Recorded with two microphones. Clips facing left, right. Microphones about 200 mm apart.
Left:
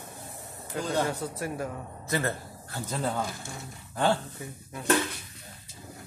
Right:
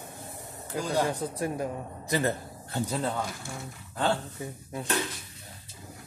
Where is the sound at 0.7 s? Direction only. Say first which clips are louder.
Right 1 dB; 15° right (ahead or behind).